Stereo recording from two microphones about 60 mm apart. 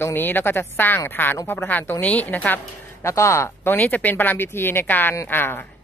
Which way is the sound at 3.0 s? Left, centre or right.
Left.